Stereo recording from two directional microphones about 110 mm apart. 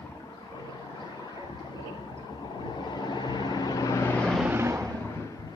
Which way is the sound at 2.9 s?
40° left (ahead or behind).